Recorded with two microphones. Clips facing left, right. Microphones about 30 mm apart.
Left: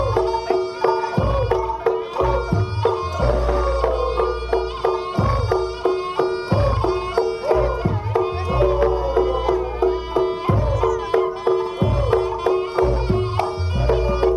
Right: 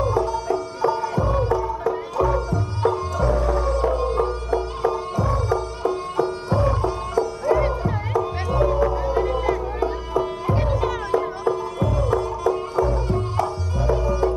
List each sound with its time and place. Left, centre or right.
0.0 s music: left
9.8 s music: left